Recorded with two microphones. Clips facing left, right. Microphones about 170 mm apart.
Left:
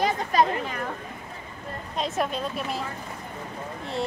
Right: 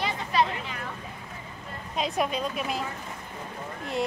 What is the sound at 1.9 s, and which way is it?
Speech, centre (ahead or behind).